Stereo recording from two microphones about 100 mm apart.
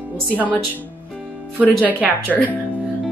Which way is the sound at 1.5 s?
15° right (ahead or behind).